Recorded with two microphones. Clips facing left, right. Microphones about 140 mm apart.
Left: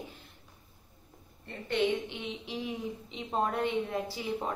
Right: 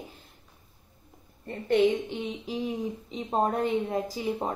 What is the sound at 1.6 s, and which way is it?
A woman's voice, 40° right (ahead or behind).